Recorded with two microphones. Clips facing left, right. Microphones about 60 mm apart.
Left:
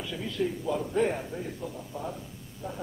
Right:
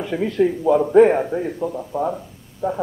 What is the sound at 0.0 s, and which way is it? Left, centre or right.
Speech, right.